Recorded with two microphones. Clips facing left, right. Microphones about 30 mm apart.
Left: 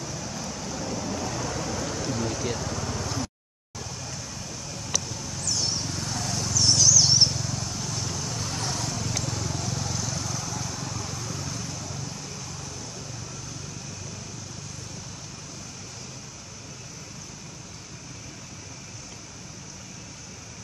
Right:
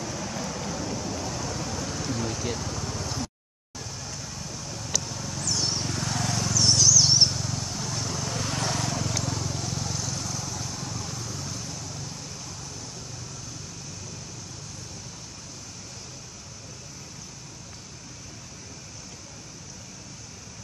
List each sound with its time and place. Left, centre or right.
0.0 s vehicle: centre
1.6 s rain: centre
2.0 s speech: centre
2.9 s vehicle: centre
3.9 s a sound: centre
5.9 s vehicle: right
6.5 s vehicle: centre
8.5 s vehicle: right
9.0 s vehicle: centre